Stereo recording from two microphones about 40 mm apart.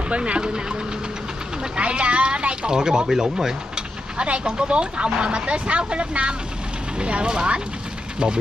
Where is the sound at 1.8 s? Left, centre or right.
Right; by 3.5 s centre.